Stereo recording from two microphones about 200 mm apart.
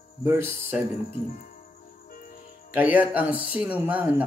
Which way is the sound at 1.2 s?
40° left (ahead or behind).